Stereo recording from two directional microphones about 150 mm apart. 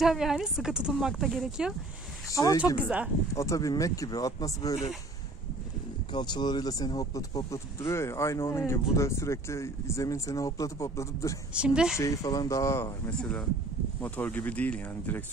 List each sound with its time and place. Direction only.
0.0 s speech: centre (ahead or behind)
2.3 s speech: 25° left (ahead or behind)
6.1 s speech: 30° left (ahead or behind)
11.5 s speech: 5° right (ahead or behind)
12.0 s speech: 20° left (ahead or behind)
13.2 s speech: 10° left (ahead or behind)